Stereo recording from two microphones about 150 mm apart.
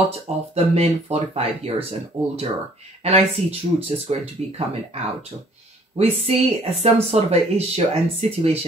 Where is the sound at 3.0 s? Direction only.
45° right (ahead or behind).